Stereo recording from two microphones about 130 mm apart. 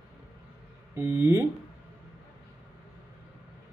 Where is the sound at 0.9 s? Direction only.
20° right (ahead or behind).